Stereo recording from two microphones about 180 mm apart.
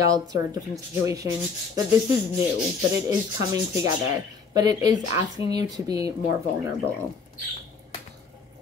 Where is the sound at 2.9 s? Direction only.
15° right (ahead or behind).